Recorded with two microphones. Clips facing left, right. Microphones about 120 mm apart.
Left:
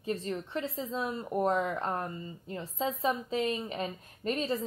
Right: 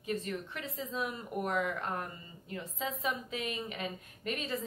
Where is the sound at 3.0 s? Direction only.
30° left (ahead or behind).